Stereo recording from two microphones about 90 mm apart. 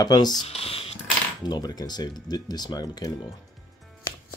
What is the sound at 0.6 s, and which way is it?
Computer keyboard, 90° left.